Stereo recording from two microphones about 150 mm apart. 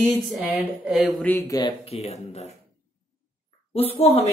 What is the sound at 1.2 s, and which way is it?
Speech, 15° left (ahead or behind).